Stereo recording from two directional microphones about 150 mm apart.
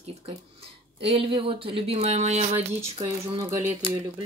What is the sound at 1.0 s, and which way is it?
Speech, 40° right (ahead or behind).